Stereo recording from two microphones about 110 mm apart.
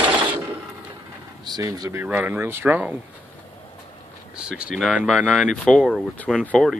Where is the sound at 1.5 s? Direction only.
35° right (ahead or behind).